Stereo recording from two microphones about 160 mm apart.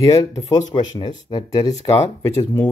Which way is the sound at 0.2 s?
35° left (ahead or behind).